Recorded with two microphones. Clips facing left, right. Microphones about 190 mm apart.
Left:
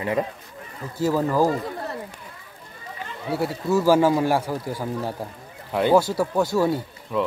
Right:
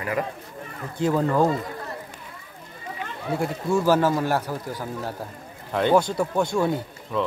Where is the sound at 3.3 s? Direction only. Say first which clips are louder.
Left 1 dB; 5° left (ahead or behind).